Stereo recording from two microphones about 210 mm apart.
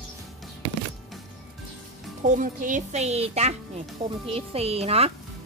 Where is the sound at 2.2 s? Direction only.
40° right (ahead or behind).